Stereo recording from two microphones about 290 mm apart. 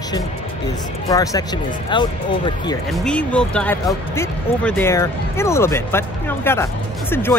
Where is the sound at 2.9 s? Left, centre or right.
Centre.